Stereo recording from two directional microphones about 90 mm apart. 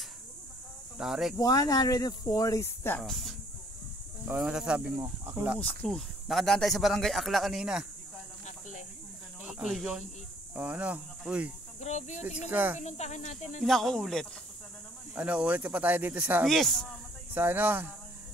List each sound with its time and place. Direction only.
0.9 s speech: 5° right (ahead or behind)
1.3 s speech: 45° left (ahead or behind)
3.0 s speech: centre (ahead or behind)
4.4 s speech: 10° right (ahead or behind)
4.8 s speech: 30° right (ahead or behind)
5.3 s speech: 15° right (ahead or behind)
5.6 s speech: 15° left (ahead or behind)
5.9 s speech: centre (ahead or behind)
9.4 s speech: 5° right (ahead or behind)
10.5 s speech: 20° right (ahead or behind)
13.6 s speech: centre (ahead or behind)
15.1 s speech: 15° right (ahead or behind)
16.4 s speech: 5° left (ahead or behind)
17.3 s speech: 20° right (ahead or behind)